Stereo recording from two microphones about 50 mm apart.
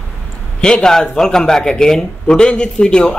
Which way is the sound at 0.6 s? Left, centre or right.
Centre.